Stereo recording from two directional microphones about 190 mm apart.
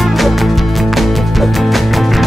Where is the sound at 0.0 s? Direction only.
Centre (ahead or behind).